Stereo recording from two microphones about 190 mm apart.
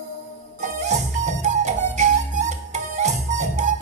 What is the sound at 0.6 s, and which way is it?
Music, 35° right (ahead or behind).